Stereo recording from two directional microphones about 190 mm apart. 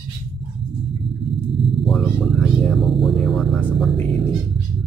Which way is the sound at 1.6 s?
Centre (ahead or behind).